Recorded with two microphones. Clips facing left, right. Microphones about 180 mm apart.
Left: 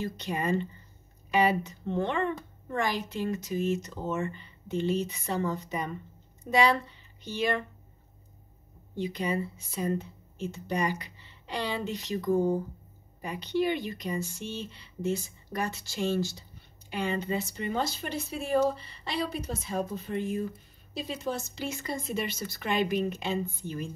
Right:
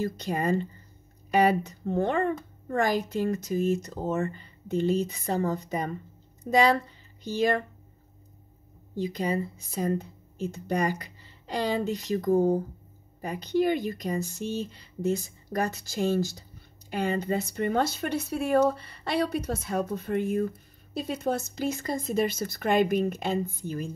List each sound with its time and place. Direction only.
0.0 s speech: 40° right (ahead or behind)
8.9 s speech: 40° right (ahead or behind)